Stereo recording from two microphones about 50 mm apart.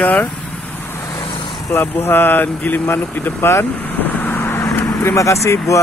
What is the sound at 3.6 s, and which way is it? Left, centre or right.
Vehicle, left.